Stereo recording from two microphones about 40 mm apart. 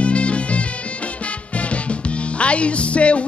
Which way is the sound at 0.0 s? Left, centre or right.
Left.